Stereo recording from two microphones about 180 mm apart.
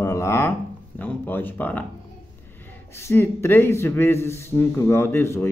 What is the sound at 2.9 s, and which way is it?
Speech, 15° left (ahead or behind).